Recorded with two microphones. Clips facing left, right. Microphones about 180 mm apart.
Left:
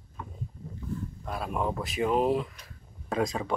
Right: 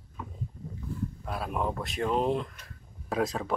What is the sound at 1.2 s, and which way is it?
Speech, centre (ahead or behind).